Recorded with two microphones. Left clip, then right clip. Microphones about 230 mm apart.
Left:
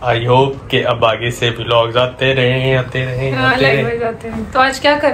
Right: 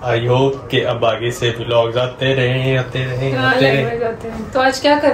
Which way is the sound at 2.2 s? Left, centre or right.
Left.